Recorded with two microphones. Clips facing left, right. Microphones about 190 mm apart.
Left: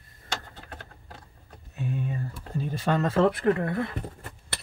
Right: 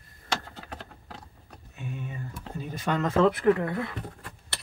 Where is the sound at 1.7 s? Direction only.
35° left (ahead or behind).